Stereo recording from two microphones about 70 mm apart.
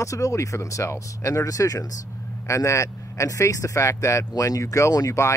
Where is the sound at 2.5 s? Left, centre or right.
Left.